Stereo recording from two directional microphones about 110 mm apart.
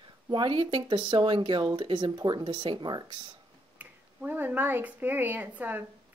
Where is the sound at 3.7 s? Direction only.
15° right (ahead or behind).